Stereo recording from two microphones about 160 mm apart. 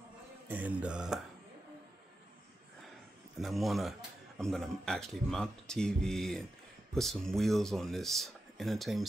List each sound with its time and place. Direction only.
0.5 s mantra: 10° right (ahead or behind)
3.3 s speech: centre (ahead or behind)